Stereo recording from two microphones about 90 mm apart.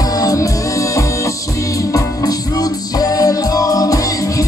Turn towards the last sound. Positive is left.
turn(degrees=40)  # may be behind; listen again after turning